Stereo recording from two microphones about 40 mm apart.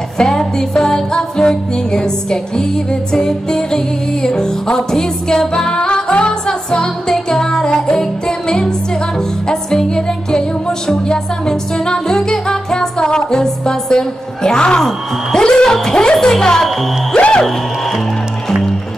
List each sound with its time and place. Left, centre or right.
0.2 s music: centre
17.1 s music: left